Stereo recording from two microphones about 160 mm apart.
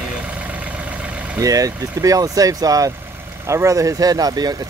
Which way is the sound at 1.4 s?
20° right (ahead or behind).